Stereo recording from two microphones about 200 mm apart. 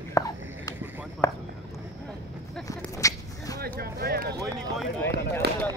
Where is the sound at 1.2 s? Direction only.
15° left (ahead or behind).